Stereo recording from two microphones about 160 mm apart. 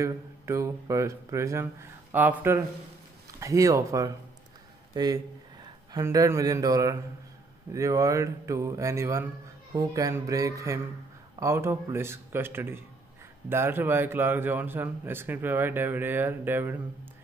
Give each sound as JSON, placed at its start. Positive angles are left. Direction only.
{"t": 0.0, "sound": "speech", "side_deg": -20}